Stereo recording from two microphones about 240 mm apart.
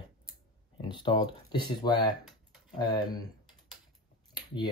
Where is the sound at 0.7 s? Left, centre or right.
Centre.